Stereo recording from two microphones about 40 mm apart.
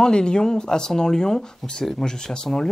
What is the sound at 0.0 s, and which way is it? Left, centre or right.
Speech, centre.